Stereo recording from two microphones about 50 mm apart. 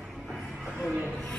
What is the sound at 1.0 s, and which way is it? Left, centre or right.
Music, centre.